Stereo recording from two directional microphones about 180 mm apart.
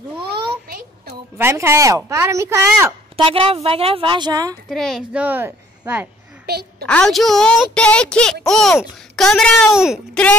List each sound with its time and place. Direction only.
1.4 s speech: 15° right (ahead or behind)
3.3 s speech: 30° right (ahead or behind)
4.6 s a child's voice: centre (ahead or behind)
6.4 s a sound: 65° right (ahead or behind)
6.9 s a woman's voice: 5° left (ahead or behind)